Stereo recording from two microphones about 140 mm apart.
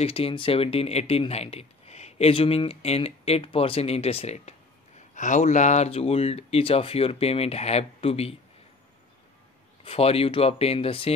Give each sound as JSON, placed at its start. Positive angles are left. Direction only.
{"t": 0.0, "sound": "speech", "side_deg": 45}
{"t": 9.8, "sound": "speech", "side_deg": 45}